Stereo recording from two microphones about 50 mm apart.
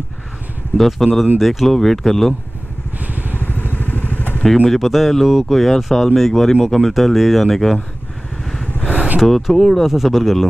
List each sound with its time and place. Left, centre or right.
0.7 s speech: centre
3.0 s vehicle: right
3.3 s vehicle: left
4.6 s speech: centre
8.9 s a sound: right
9.2 s speech: centre